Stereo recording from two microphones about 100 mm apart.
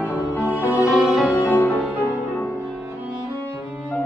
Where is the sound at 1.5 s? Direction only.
20° left (ahead or behind).